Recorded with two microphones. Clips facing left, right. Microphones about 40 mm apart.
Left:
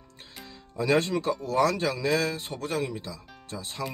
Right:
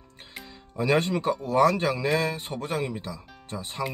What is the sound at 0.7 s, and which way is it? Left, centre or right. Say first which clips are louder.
A man's voice: right 1 dB; right.